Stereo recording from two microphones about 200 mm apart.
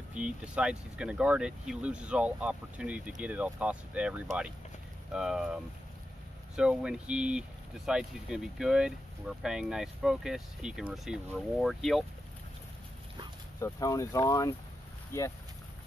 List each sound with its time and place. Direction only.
0.1 s speech: 5° right (ahead or behind)
13.6 s speech: 15° left (ahead or behind)